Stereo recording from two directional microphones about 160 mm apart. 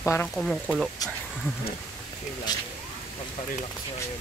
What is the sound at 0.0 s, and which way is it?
Speech, 15° left (ahead or behind).